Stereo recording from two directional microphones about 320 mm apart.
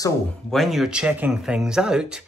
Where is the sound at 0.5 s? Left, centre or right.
Centre.